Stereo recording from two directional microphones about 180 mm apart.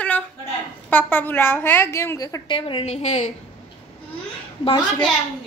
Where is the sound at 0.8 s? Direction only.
10° left (ahead or behind); by 3.3 s 40° left (ahead or behind).